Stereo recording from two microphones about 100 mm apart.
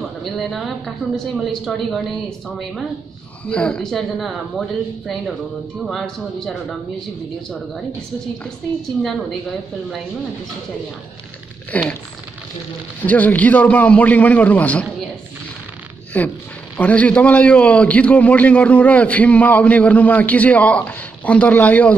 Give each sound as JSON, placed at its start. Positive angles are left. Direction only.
{"t": 0.2, "sound": "a woman's voice", "side_deg": 0}
{"t": 3.4, "sound": "a man's voice", "side_deg": 10}
{"t": 3.9, "sound": "a woman's voice", "side_deg": 0}
{"t": 11.7, "sound": "a man's voice", "side_deg": 15}
{"t": 13.0, "sound": "a man's voice", "side_deg": 15}
{"t": 16.1, "sound": "a man's voice", "side_deg": 15}